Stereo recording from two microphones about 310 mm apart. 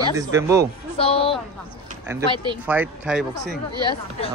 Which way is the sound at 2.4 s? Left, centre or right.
Centre.